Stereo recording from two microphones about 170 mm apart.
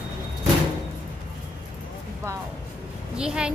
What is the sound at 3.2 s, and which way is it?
Speech, 5° right (ahead or behind).